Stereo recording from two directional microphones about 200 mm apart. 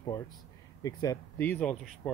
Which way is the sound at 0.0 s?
20° left (ahead or behind).